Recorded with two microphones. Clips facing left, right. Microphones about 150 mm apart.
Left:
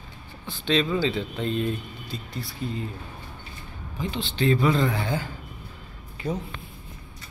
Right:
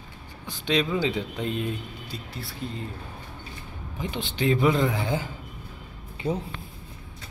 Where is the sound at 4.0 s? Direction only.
20° right (ahead or behind).